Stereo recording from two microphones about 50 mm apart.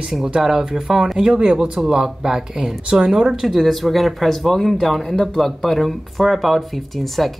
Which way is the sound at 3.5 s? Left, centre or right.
Centre.